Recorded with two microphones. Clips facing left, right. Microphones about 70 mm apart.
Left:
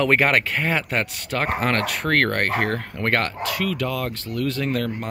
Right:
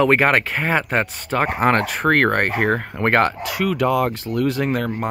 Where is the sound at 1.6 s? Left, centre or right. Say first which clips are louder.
Right 5 dB; right.